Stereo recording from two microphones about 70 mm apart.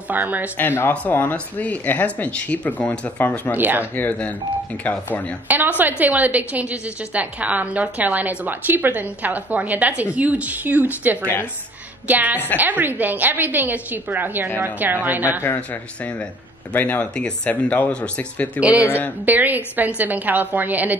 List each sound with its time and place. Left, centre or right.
0.1 s a woman's voice: right
0.6 s speech: left
3.5 s a woman's voice: right
3.9 s speech: left
5.5 s a woman's voice: right
15.4 s speech: left
17.0 s speech: centre
18.6 s a woman's voice: centre